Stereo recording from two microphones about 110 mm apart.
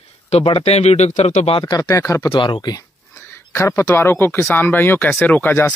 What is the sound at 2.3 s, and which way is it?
Speech, 45° left (ahead or behind).